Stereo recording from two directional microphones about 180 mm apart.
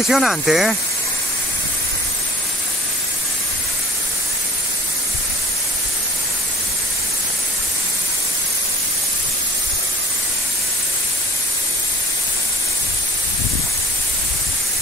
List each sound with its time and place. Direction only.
0.1 s speech: centre (ahead or behind)